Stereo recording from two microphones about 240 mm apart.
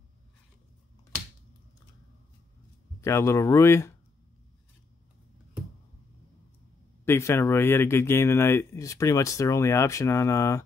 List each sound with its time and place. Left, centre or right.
3.0 s speech: centre
7.1 s speech: centre